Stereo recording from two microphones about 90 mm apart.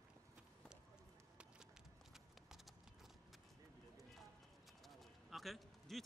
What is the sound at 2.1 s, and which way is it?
Clip-clop, 5° right (ahead or behind).